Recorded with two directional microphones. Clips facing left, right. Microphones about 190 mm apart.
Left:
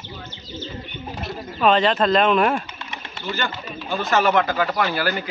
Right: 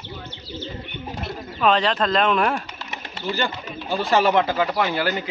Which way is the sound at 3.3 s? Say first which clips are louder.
Right 2 dB; 35° right (ahead or behind).